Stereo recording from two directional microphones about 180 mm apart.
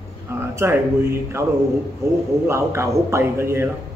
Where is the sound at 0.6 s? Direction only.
10° right (ahead or behind).